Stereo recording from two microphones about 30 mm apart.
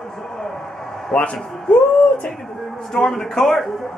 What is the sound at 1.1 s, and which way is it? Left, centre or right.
Speech, left.